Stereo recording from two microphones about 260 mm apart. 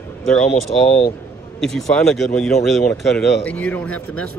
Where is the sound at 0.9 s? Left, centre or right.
Left.